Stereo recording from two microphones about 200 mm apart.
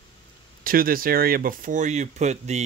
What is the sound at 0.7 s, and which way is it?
Speech, 45° right (ahead or behind).